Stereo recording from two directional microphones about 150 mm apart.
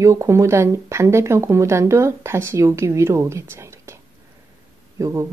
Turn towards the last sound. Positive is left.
turn(degrees=-20)  # may be behind; listen again after turning